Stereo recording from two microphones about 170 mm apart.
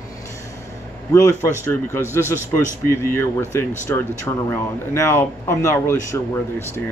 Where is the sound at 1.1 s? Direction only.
15° left (ahead or behind).